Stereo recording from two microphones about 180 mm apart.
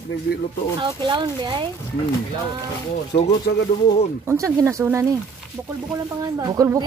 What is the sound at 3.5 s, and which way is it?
Speech, 70° left (ahead or behind).